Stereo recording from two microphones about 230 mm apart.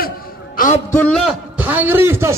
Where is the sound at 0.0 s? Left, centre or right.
Left.